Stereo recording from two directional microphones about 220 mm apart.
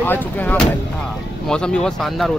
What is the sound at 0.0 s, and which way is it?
Speech, 10° left (ahead or behind).